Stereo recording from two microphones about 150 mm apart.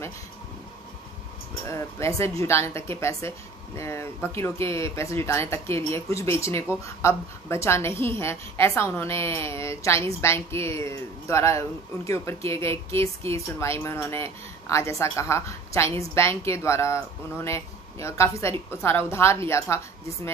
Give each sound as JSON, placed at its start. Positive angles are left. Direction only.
{"t": 1.5, "sound": "a woman's voice", "side_deg": 20}